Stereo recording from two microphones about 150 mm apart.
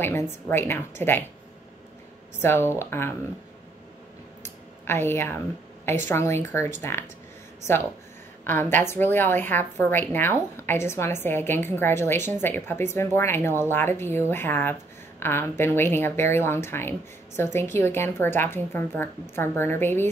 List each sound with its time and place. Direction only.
0.0 s a woman's voice: 15° left (ahead or behind)
2.4 s a woman's voice: 15° left (ahead or behind)
4.4 s a sound: 15° left (ahead or behind)
6.0 s a woman's voice: 15° left (ahead or behind)
8.5 s a woman's voice: 15° left (ahead or behind)